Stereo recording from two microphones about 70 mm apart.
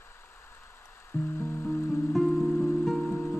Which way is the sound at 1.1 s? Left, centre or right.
Left.